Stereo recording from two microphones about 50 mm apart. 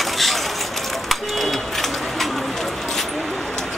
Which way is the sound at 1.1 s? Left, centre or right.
Centre.